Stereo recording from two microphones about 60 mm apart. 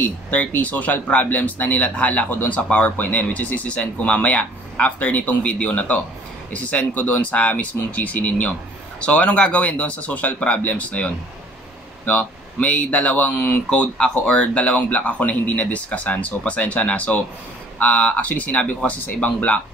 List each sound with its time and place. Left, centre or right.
0.0 s speech: left
12.1 s speech: left